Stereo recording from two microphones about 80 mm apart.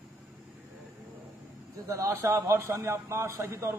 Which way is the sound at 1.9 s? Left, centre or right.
Right.